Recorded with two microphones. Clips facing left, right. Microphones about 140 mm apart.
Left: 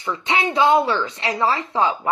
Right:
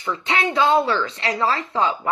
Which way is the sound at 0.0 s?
20° left (ahead or behind).